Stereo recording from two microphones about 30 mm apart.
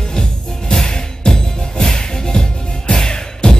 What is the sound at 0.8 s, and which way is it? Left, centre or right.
Music, left.